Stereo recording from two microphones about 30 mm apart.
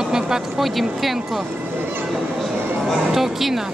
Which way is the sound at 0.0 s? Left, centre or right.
Centre.